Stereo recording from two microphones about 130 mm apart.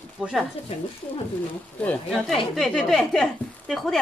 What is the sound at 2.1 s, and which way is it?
A woman's voice, 5° left (ahead or behind).